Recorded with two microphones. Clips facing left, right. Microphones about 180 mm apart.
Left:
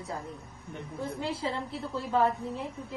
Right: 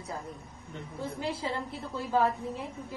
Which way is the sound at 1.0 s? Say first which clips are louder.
Left 1 dB; centre (ahead or behind).